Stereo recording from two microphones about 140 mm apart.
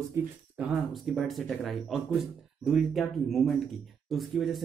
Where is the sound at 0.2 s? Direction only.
20° right (ahead or behind).